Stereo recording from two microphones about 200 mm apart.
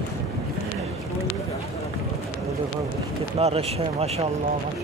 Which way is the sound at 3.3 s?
30° right (ahead or behind).